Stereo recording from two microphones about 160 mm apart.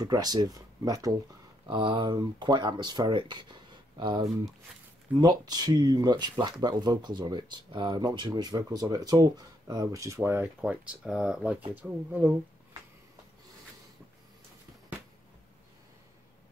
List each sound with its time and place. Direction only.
0.0 s speech: 25° right (ahead or behind)